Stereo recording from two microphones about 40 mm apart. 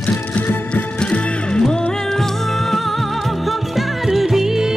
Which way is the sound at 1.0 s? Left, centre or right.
Left.